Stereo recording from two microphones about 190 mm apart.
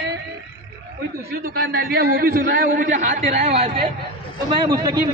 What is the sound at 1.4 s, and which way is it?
A man's voice, 55° right (ahead or behind).